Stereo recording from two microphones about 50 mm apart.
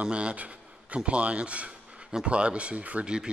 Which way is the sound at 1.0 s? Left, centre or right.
Right.